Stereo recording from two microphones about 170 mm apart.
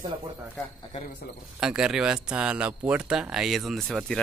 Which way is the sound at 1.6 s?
5° right (ahead or behind).